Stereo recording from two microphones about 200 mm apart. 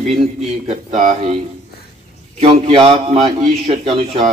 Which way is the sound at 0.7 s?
35° right (ahead or behind).